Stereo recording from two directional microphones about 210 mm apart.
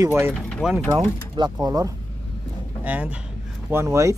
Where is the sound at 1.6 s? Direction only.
15° right (ahead or behind).